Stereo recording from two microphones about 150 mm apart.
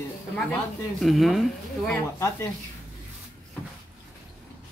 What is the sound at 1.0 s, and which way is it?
Speech, centre (ahead or behind).